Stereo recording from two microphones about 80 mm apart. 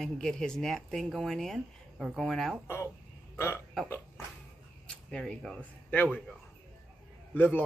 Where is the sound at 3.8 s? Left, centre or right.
Left.